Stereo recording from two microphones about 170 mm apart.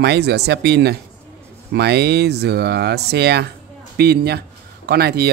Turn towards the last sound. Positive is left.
turn(degrees=-70)  # may be behind; listen again after turning